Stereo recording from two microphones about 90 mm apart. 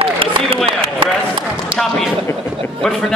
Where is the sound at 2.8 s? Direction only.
5° left (ahead or behind).